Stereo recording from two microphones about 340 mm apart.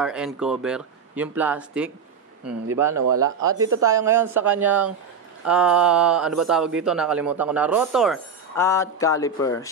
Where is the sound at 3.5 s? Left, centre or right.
Right.